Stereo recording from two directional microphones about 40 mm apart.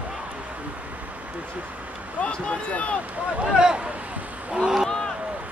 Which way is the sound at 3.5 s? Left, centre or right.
Centre.